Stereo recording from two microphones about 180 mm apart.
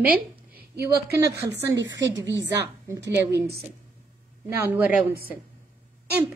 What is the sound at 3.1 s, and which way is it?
Speech, 15° right (ahead or behind).